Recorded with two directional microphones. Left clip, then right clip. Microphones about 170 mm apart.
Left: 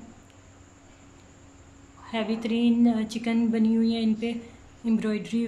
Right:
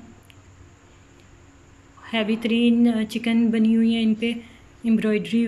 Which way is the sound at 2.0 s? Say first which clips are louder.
Right 5 dB; centre (ahead or behind).